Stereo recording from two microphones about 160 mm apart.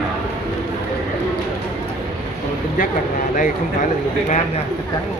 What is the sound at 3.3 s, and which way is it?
Speech, 55° left (ahead or behind).